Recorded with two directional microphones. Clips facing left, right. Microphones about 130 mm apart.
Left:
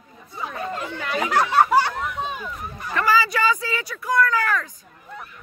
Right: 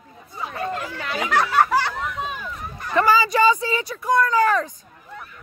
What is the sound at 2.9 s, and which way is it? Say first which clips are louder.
Speech: right 3 dB; 20° right (ahead or behind).